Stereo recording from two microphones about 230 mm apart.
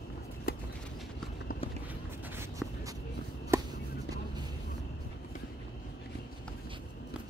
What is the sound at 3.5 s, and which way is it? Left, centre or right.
Chop, centre.